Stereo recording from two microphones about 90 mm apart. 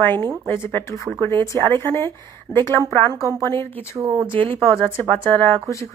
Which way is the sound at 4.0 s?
40° right (ahead or behind).